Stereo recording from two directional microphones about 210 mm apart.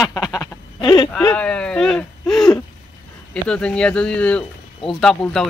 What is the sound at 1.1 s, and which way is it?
Speech, 5° left (ahead or behind).